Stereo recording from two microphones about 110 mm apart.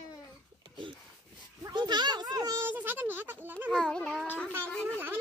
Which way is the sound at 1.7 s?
40° right (ahead or behind).